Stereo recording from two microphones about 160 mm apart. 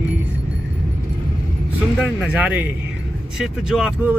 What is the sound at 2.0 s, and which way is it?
Speech, 5° right (ahead or behind).